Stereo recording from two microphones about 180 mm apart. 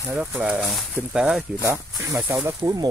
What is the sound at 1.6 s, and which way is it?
Speech, 15° right (ahead or behind).